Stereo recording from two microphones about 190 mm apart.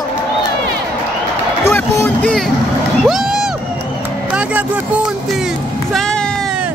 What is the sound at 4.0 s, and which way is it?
Music, 5° right (ahead or behind).